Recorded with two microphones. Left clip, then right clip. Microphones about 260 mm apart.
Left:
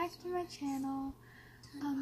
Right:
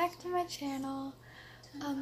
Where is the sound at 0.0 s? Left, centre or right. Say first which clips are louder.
Right 5 dB; centre.